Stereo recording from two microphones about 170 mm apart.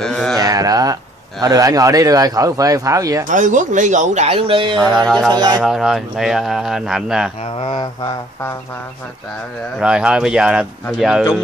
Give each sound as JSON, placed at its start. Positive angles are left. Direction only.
{"t": 0.0, "sound": "a sound", "side_deg": 5}
{"t": 0.4, "sound": "a sound", "side_deg": -20}
{"t": 1.4, "sound": "speech", "side_deg": -20}
{"t": 3.3, "sound": "speech", "side_deg": -50}
{"t": 4.8, "sound": "speech", "side_deg": 0}
{"t": 5.3, "sound": "speech", "side_deg": -25}
{"t": 5.6, "sound": "speech", "side_deg": 0}
{"t": 9.8, "sound": "speech", "side_deg": -5}